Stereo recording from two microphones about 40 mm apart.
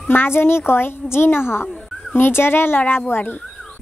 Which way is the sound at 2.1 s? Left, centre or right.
Left.